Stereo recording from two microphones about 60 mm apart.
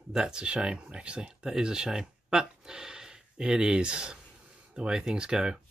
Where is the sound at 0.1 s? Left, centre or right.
Centre.